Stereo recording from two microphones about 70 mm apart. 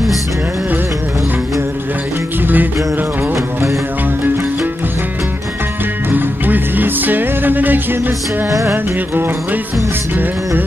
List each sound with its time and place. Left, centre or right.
2.4 s music: right
6.0 s music: right
8.5 s music: right